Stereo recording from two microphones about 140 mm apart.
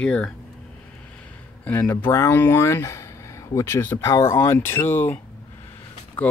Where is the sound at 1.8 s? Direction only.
20° left (ahead or behind).